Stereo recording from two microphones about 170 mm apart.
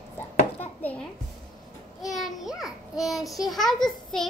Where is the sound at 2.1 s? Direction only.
Centre (ahead or behind).